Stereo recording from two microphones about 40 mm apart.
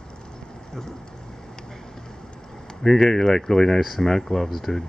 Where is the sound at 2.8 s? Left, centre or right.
Centre.